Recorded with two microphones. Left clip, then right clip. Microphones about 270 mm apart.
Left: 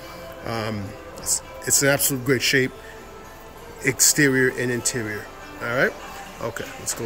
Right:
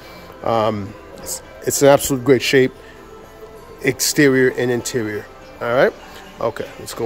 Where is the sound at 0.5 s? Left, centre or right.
Centre.